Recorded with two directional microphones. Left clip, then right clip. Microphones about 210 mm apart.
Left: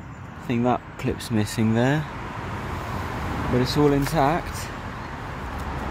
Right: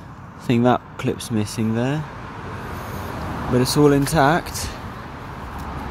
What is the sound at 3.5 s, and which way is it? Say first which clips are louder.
Speech: right 5 dB; 10° right (ahead or behind).